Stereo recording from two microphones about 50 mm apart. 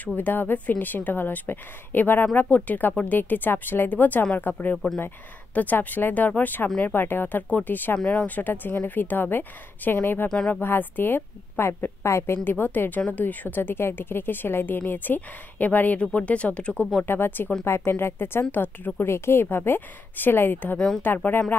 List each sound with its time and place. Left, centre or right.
0.0 s a woman's voice: left
10.2 s speech: centre
10.5 s a woman's voice: left
12.4 s a woman's voice: left
13.6 s a woman's voice: left
17.0 s a woman's voice: left
19.0 s a woman's voice: left